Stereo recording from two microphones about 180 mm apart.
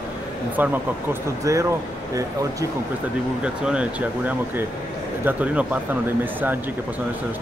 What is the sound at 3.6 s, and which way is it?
Speech, 10° right (ahead or behind).